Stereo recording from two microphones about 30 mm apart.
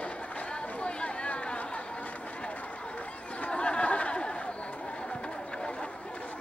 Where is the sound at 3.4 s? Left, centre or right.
Left.